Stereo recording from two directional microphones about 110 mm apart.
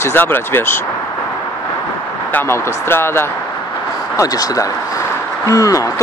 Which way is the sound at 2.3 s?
20° left (ahead or behind).